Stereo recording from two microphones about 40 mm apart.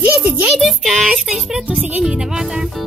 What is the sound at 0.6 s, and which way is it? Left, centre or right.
Child singing, centre.